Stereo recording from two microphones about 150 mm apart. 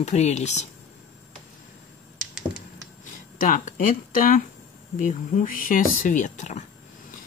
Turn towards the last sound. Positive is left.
turn(degrees=50)  # may be behind; listen again after turning